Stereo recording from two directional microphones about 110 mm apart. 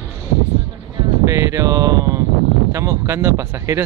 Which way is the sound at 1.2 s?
30° right (ahead or behind).